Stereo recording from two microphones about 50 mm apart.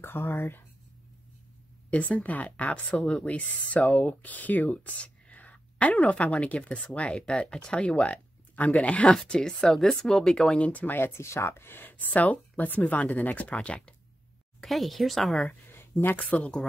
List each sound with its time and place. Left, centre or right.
0.0 s speech: left
1.9 s speech: left
9.1 s speech: centre
10.6 s speech: left
11.0 s speech: left
11.9 s speech: left
14.6 s speech: centre
15.7 s a sound: left